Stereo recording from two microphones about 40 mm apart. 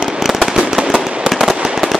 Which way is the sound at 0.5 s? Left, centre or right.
Centre.